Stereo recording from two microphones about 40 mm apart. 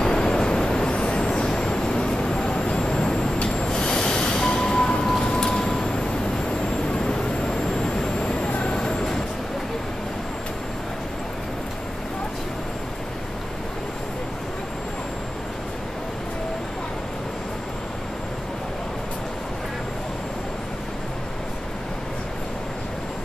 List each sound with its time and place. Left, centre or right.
0.0 s vehicle: centre
3.3 s train: left
5.0 s a sound: centre
6.9 s vehicle: centre